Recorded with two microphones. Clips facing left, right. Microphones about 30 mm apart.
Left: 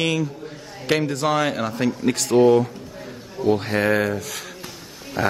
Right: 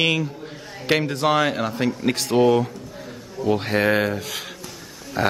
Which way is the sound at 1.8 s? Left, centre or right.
Centre.